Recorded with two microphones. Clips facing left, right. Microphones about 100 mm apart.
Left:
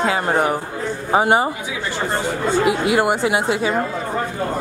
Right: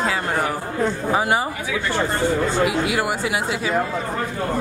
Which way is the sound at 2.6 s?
30° left (ahead or behind).